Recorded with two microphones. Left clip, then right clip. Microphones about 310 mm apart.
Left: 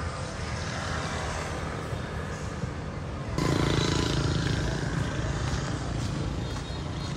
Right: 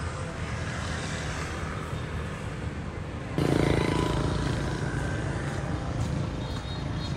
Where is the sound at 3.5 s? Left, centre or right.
Right.